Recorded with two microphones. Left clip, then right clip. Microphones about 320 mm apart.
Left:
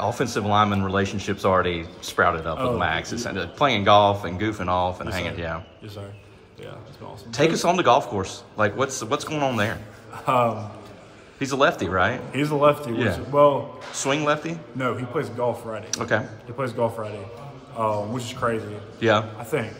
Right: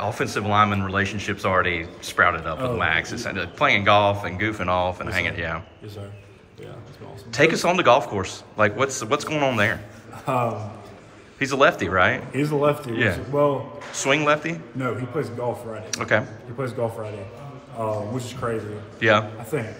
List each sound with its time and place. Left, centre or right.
0.0 s speech: centre
7.2 s a man's voice: centre
12.9 s speech: centre
15.9 s a man's voice: centre
18.9 s speech: centre